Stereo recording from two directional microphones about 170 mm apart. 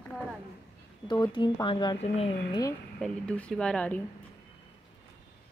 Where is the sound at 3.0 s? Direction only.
5° left (ahead or behind).